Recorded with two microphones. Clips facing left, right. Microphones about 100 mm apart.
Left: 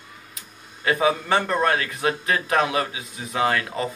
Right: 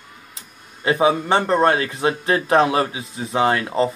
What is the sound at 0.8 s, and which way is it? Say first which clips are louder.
Speech: right 4 dB; 25° right (ahead or behind).